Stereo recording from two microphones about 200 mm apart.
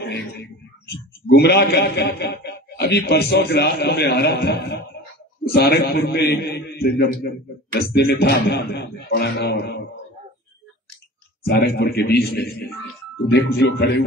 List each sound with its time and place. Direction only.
0.0 s a man's voice: 55° left (ahead or behind)
11.4 s a man's voice: 55° left (ahead or behind)